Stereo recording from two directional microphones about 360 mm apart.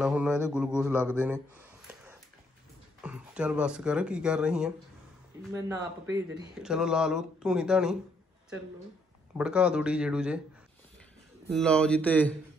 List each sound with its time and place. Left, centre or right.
0.0 s speech: centre
9.4 s speech: centre
11.5 s speech: centre